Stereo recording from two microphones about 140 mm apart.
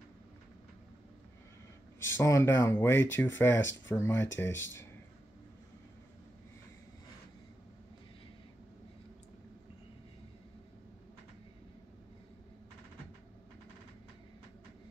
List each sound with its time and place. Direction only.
2.0 s speech: 20° left (ahead or behind)